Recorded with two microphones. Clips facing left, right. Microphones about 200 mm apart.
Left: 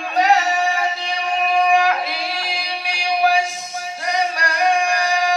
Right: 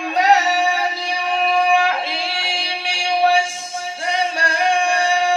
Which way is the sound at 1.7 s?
30° right (ahead or behind).